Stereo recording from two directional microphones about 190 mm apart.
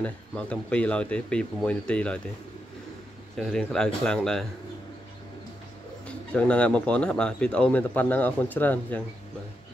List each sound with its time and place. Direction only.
0.0 s speech: 5° left (ahead or behind)
3.3 s speech: centre (ahead or behind)
6.0 s speech: 5° left (ahead or behind)